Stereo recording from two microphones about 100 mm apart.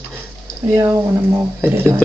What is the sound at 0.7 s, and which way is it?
Speech, 25° right (ahead or behind).